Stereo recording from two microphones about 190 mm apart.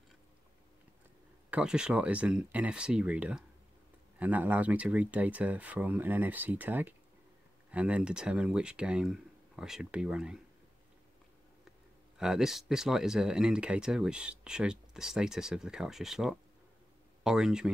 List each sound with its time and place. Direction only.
1.5 s speech: 5° right (ahead or behind)
12.2 s speech: 5° right (ahead or behind)